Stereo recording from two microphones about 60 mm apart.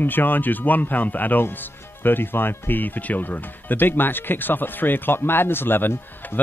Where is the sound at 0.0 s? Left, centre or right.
Left.